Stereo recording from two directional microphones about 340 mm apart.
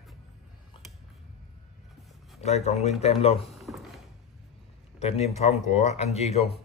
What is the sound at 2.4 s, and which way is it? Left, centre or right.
Speech, centre.